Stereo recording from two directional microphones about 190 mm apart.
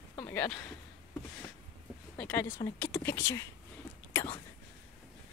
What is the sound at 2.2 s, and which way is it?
Speech, 10° left (ahead or behind).